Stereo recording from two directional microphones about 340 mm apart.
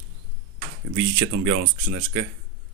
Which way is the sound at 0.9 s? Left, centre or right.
Right.